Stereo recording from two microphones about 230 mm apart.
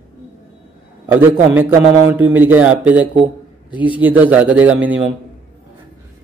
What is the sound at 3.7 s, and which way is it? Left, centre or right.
Speech, left.